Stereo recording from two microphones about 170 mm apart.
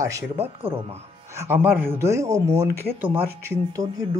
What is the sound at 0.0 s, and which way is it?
Speech, 15° right (ahead or behind).